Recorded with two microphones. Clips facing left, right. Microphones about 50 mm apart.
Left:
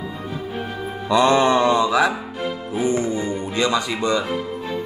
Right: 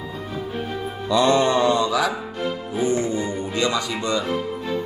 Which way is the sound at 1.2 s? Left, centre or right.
Centre.